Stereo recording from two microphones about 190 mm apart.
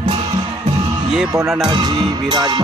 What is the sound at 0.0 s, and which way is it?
Music, 30° right (ahead or behind).